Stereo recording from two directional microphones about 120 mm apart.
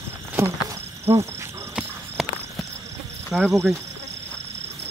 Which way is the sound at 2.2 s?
Centre (ahead or behind).